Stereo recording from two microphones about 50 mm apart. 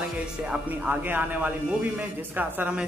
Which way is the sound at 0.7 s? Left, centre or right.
Right.